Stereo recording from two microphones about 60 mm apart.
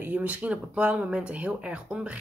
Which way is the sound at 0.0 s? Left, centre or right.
Right.